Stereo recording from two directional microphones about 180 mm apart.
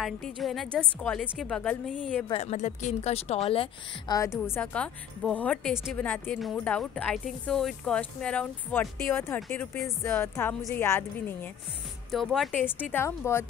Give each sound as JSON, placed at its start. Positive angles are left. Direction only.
{"t": 0.0, "sound": "a woman's voice", "side_deg": 0}
{"t": 2.2, "sound": "speech", "side_deg": 35}
{"t": 4.1, "sound": "speech", "side_deg": 15}
{"t": 12.1, "sound": "a woman's voice", "side_deg": 0}